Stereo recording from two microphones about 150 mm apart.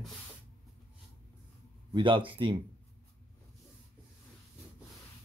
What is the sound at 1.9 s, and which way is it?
Speech, 35° right (ahead or behind).